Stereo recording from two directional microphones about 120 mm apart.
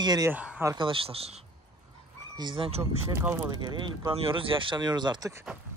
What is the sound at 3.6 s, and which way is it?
Speech, 40° right (ahead or behind).